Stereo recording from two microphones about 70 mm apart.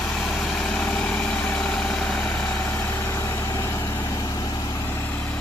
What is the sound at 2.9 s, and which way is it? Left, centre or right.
Vehicle, left.